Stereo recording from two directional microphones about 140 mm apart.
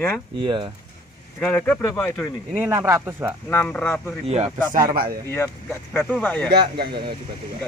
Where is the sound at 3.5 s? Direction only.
15° left (ahead or behind).